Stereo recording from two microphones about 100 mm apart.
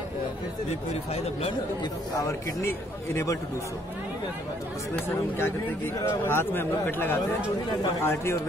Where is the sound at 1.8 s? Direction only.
35° left (ahead or behind).